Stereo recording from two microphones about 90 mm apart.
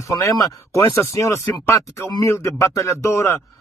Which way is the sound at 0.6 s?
30° left (ahead or behind).